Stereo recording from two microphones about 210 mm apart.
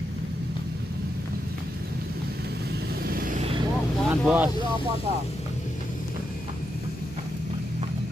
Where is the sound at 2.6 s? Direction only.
45° right (ahead or behind).